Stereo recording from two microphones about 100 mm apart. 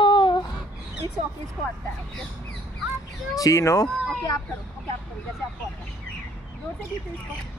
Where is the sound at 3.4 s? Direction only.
35° left (ahead or behind).